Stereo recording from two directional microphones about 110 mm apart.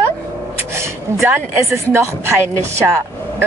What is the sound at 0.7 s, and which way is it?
Speech, 25° right (ahead or behind).